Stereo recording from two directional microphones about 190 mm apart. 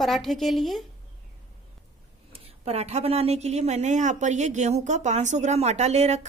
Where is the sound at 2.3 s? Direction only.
35° right (ahead or behind).